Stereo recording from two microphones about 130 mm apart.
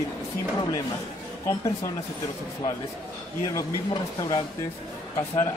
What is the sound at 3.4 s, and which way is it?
Speech, 30° left (ahead or behind).